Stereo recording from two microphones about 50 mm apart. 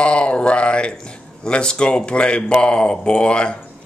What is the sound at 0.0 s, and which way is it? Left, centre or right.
Speech, left.